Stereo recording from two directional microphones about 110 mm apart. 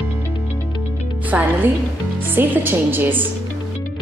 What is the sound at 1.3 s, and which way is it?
A woman's voice, 15° right (ahead or behind).